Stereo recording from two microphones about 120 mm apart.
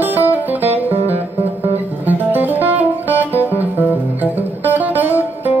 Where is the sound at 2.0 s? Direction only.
15° right (ahead or behind).